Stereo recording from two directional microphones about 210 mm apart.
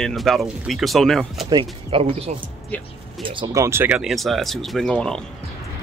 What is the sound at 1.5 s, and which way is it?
Speech, 25° right (ahead or behind).